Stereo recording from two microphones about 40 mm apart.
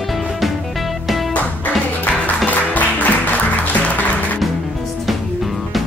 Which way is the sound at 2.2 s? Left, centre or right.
Left.